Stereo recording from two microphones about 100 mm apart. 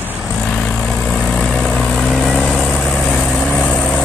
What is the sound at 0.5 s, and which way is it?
Vehicle, 10° left (ahead or behind).